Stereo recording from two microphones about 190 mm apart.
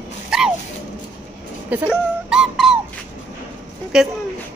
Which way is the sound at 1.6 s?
5° right (ahead or behind).